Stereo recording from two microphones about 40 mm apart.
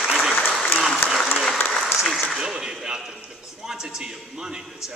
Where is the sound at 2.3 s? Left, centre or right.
Centre.